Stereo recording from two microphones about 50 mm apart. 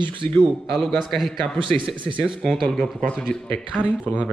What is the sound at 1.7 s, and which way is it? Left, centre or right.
Speech, left.